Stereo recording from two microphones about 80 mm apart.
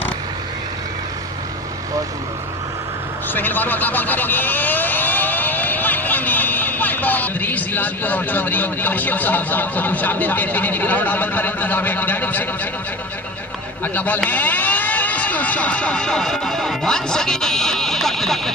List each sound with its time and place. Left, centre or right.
3.3 s speech: left
13.9 s speech: left; by 18.5 s centre